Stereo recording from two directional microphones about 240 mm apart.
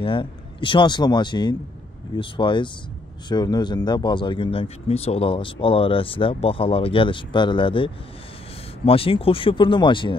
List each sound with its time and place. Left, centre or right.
0.0 s speech: left